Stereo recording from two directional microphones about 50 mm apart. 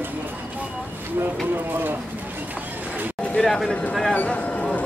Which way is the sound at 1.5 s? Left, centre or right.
Right.